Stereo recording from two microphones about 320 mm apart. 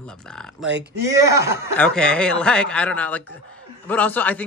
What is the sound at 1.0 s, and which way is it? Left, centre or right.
Speech, centre.